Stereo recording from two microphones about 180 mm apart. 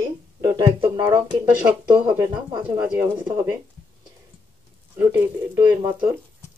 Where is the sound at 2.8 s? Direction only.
10° right (ahead or behind).